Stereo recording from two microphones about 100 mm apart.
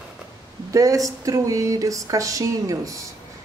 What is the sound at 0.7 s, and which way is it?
A woman's voice, 35° right (ahead or behind).